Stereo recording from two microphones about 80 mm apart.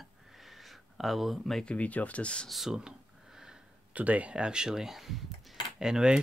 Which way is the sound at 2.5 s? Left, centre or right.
Centre.